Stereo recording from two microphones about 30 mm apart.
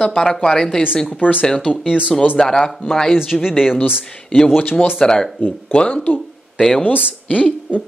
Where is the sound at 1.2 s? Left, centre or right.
Left.